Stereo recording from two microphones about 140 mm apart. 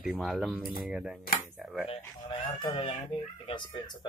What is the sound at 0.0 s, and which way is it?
Speech, centre (ahead or behind).